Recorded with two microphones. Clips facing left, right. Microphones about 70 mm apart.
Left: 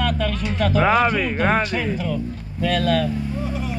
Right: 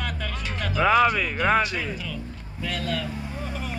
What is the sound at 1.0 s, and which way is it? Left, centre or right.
Speech, left.